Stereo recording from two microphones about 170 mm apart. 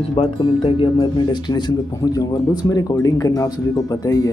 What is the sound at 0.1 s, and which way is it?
Speech, 35° left (ahead or behind).